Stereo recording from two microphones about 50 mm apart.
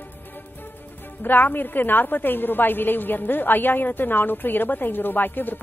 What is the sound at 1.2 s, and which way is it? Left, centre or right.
A woman's voice, left.